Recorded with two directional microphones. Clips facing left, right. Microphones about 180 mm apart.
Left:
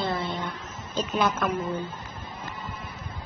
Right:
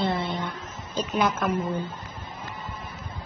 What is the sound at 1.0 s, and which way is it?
Speech, 10° right (ahead or behind).